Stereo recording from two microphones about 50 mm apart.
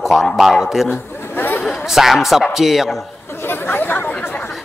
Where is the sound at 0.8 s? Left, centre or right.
Left.